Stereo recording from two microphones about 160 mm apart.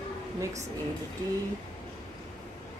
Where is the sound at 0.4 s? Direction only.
20° right (ahead or behind).